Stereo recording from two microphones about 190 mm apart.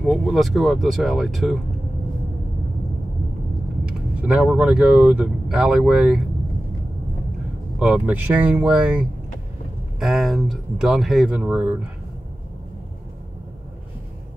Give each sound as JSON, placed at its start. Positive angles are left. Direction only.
{"t": 0.0, "sound": "speech", "side_deg": 0}
{"t": 3.8, "sound": "speech", "side_deg": -5}
{"t": 7.8, "sound": "speech", "side_deg": -5}